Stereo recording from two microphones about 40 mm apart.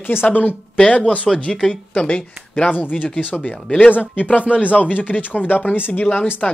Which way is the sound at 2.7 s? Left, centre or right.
Left.